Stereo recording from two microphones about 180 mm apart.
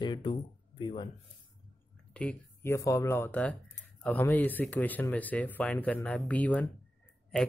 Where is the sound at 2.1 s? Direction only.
5° left (ahead or behind).